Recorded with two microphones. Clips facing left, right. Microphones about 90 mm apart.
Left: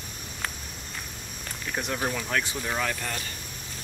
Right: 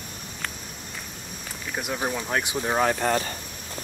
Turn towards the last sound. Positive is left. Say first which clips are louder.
# right 8 dB
turn(degrees=-35)  # may be behind; listen again after turning